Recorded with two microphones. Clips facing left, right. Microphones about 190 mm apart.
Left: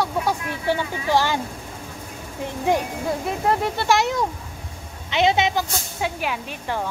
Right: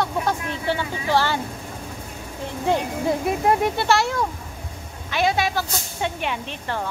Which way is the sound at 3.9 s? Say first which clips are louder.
Left 1 dB; 20° left (ahead or behind).